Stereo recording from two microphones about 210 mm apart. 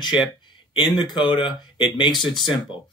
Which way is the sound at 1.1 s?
20° left (ahead or behind).